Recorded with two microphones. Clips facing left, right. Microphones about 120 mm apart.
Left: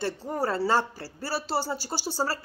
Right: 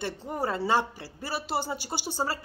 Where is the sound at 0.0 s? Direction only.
15° right (ahead or behind).